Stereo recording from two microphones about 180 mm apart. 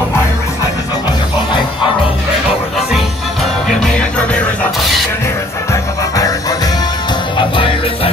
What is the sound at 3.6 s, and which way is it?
Music, 5° left (ahead or behind).